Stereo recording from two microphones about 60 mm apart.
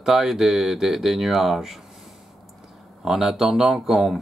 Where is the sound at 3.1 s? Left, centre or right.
Centre.